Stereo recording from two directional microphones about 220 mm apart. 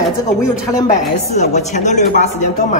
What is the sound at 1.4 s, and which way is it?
Speech, 30° left (ahead or behind).